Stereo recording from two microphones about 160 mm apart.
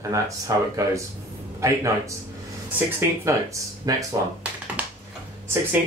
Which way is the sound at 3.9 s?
25° right (ahead or behind).